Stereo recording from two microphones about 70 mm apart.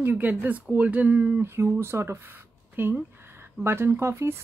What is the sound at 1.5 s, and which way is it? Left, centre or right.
Speech, right.